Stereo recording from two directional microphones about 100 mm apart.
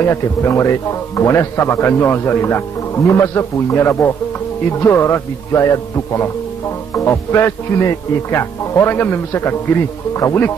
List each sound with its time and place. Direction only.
0.0 s speech: 30° left (ahead or behind)